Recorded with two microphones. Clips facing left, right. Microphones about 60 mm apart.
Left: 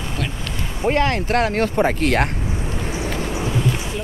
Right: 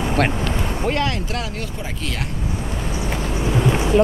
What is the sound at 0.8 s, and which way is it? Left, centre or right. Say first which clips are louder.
Speech: left 6 dB; left.